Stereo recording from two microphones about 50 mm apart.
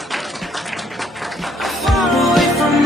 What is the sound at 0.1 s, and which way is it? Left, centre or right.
Music, centre.